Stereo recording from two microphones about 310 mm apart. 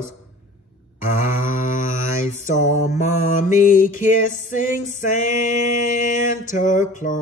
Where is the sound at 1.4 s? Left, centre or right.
Left.